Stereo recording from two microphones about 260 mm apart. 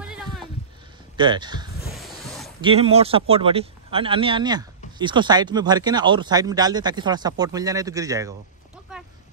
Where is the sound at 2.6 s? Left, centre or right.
Right.